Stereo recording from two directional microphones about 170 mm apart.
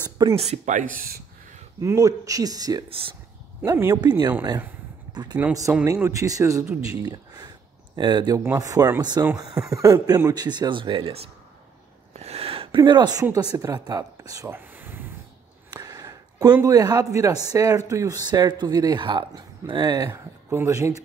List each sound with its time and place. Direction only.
0.4 s speech: 45° right (ahead or behind)
1.8 s a man's voice: 15° right (ahead or behind)
2.9 s speech: 30° right (ahead or behind)
3.6 s a man's voice: 15° right (ahead or behind)
7.0 s a sound: 25° right (ahead or behind)
8.5 s a man's voice: 20° right (ahead or behind)
15.7 s a sound: 20° right (ahead or behind)
16.6 s a man's voice: 20° right (ahead or behind)
20.1 s speech: 15° right (ahead or behind)